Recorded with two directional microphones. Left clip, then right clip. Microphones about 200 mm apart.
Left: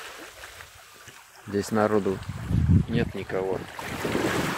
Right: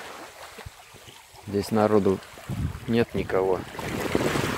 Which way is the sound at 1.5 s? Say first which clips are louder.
Right 2 dB; centre (ahead or behind).